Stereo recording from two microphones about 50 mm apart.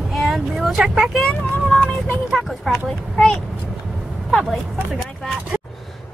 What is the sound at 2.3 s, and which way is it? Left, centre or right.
Speech, centre.